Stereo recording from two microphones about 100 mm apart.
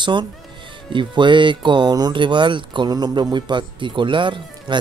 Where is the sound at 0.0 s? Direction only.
50° right (ahead or behind).